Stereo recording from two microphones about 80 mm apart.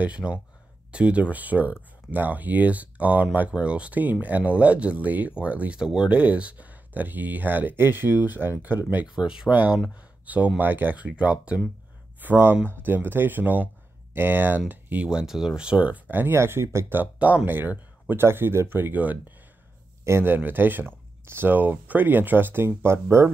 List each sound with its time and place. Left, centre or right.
0.0 s speech: centre
9.1 s speech: centre
15.0 s speech: centre; by 17.0 s right
17.0 s speech: centre